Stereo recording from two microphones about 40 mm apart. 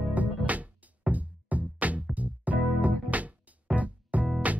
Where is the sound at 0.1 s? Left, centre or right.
Right.